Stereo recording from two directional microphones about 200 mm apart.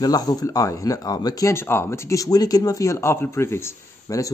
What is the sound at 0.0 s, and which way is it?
Speech, 20° left (ahead or behind).